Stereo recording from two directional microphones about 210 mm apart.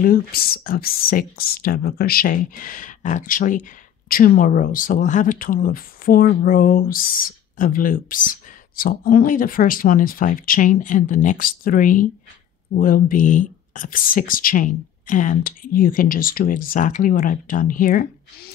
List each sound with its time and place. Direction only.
0.0 s speech: 45° left (ahead or behind)